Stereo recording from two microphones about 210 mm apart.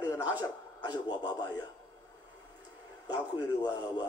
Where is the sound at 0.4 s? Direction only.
15° left (ahead or behind).